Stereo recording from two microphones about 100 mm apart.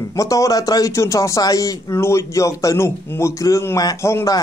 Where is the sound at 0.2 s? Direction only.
35° left (ahead or behind).